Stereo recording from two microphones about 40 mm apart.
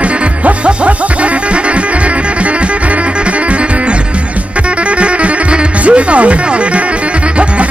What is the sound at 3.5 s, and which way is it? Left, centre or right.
Music, right.